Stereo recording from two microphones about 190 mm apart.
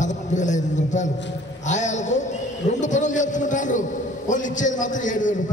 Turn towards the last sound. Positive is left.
turn(degrees=40)  # may be behind; listen again after turning